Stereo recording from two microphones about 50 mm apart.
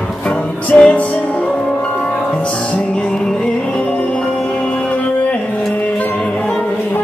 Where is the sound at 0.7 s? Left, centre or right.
Left.